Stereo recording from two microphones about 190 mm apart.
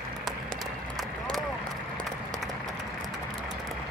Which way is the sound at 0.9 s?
Centre (ahead or behind).